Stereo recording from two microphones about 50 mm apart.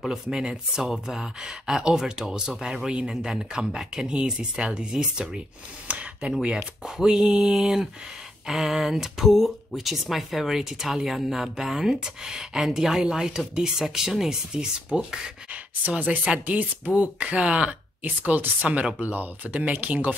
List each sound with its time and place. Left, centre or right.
0.1 s speech: centre
5.9 s speech: right
6.4 s speech: centre
16.3 s speech: right